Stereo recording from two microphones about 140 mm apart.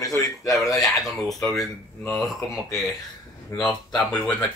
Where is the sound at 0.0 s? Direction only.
25° left (ahead or behind).